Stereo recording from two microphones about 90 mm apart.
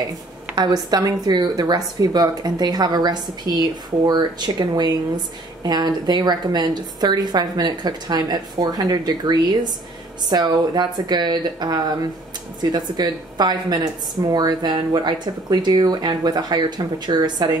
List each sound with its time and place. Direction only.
0.6 s a woman's voice: 50° right (ahead or behind)